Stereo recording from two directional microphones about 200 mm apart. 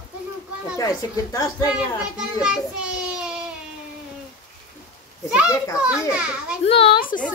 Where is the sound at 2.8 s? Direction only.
5° right (ahead or behind).